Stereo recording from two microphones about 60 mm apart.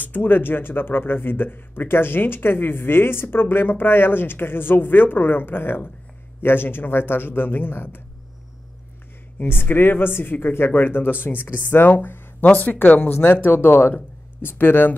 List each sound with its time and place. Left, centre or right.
0.0 s speech: left
9.4 s speech: left